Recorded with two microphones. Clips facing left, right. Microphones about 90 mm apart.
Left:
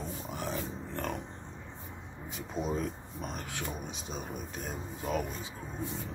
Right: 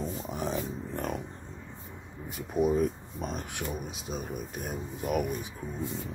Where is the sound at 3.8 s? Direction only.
5° right (ahead or behind).